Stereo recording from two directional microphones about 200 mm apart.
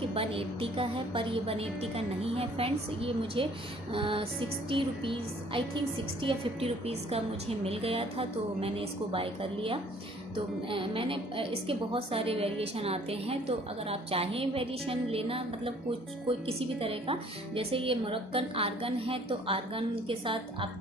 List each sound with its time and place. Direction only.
0.1 s a woman's voice: 30° right (ahead or behind)